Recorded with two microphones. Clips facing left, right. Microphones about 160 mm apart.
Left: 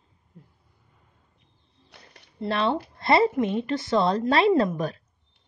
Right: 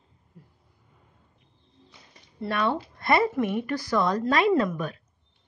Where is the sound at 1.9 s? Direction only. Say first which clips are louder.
Left 6 dB; 70° left (ahead or behind).